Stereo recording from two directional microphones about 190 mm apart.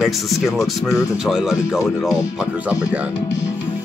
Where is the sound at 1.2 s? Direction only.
5° right (ahead or behind).